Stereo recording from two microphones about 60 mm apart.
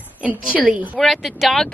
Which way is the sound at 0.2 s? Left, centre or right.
Right.